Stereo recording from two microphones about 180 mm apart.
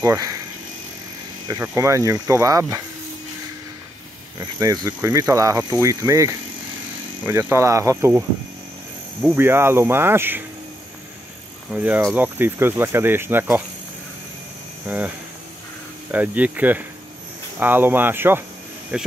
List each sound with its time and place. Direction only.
0.0 s speech: 20° right (ahead or behind)
1.5 s speech: 15° right (ahead or behind)
4.4 s speech: 20° right (ahead or behind)
11.7 s speech: 10° right (ahead or behind)
16.1 s speech: 10° right (ahead or behind)